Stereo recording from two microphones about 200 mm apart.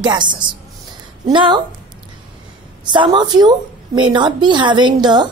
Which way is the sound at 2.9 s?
25° right (ahead or behind).